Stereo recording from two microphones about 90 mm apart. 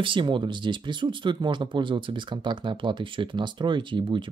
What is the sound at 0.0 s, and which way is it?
Speech, 65° right (ahead or behind).